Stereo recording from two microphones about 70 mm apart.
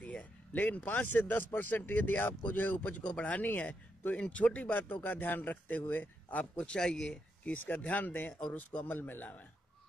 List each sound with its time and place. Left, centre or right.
0.0 s a sound: centre
0.8 s speech: left
6.6 s speech: centre
7.5 s speech: left